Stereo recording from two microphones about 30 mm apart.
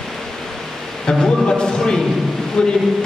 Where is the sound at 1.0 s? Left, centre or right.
Left.